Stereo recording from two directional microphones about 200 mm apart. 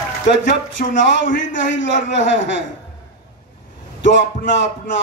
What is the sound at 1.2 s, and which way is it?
Music, 40° left (ahead or behind).